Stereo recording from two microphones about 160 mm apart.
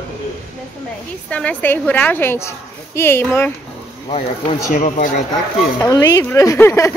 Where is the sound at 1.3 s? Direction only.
10° left (ahead or behind).